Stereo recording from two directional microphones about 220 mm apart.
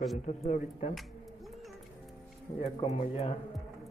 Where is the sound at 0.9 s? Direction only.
Centre (ahead or behind).